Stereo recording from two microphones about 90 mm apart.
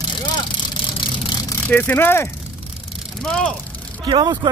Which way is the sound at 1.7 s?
20° left (ahead or behind).